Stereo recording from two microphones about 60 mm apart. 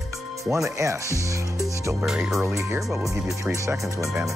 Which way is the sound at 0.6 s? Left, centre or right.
Right.